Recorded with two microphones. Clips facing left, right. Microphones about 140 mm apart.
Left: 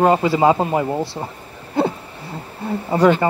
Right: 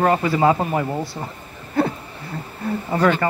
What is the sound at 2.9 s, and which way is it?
Speech, 25° left (ahead or behind).